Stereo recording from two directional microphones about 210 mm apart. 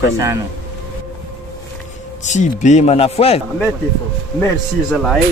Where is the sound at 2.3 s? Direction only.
35° left (ahead or behind).